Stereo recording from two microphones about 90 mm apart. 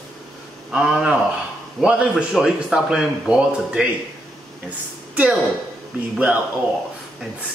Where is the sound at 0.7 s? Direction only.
5° right (ahead or behind).